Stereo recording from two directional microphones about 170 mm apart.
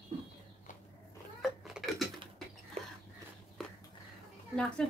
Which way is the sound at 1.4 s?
Centre (ahead or behind).